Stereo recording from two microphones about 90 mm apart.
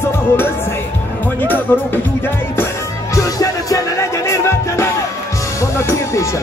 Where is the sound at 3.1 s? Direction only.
40° left (ahead or behind).